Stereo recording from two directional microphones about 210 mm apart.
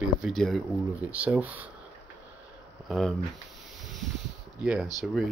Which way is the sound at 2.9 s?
Centre (ahead or behind).